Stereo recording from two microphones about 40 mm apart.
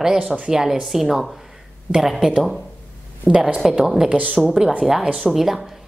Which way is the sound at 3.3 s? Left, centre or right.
Right.